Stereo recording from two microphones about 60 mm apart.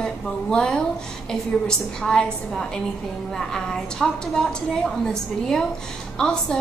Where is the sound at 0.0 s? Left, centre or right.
Centre.